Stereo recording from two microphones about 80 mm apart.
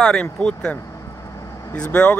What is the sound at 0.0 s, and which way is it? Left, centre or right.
Speech, centre.